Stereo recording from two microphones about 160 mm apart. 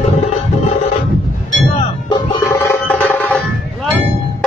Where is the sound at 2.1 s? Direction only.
20° left (ahead or behind).